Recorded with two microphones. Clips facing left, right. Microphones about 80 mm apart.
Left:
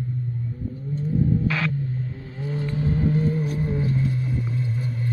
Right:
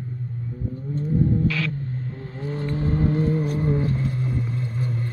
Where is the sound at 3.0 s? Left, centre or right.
Centre.